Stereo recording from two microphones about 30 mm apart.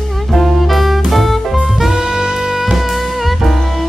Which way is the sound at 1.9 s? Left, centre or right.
Right.